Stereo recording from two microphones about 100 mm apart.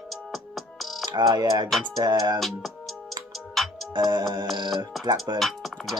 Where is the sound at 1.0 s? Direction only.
45° right (ahead or behind).